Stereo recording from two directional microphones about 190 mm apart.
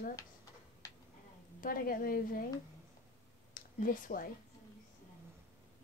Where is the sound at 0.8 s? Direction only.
20° left (ahead or behind).